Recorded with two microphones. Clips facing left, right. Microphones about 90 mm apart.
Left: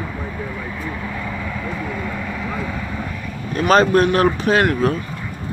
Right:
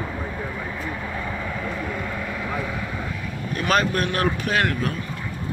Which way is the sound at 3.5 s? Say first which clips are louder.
Left 8 dB; 30° left (ahead or behind).